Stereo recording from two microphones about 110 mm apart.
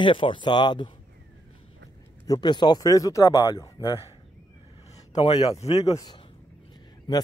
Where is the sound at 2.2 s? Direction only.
40° left (ahead or behind).